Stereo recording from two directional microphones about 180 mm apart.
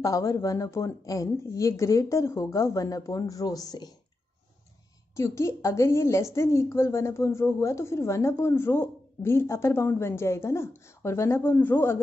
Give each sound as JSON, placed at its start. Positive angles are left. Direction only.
{"t": 0.0, "sound": "speech", "side_deg": 15}
{"t": 5.1, "sound": "a woman's voice", "side_deg": 15}